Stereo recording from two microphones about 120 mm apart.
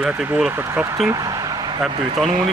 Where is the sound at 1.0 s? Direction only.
30° right (ahead or behind).